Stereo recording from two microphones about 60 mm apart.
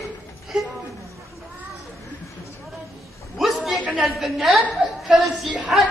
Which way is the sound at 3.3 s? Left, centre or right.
Centre.